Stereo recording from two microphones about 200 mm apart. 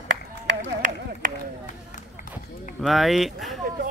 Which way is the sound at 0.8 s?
40° right (ahead or behind).